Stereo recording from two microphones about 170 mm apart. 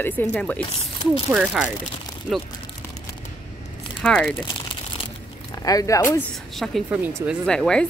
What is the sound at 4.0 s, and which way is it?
Speech, 5° left (ahead or behind).